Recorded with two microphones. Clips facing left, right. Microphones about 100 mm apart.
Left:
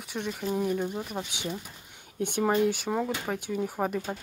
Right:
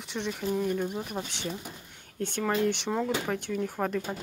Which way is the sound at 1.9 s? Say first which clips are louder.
Left 3 dB; 10° left (ahead or behind).